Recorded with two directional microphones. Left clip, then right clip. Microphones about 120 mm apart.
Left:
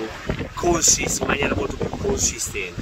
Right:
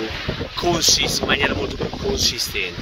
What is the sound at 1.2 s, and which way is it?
Speech, 15° left (ahead or behind).